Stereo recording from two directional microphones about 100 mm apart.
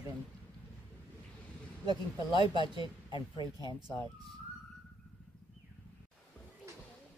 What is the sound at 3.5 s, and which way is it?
Speech, 45° right (ahead or behind).